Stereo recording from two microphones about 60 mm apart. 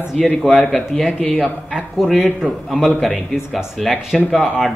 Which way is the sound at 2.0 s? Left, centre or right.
Centre.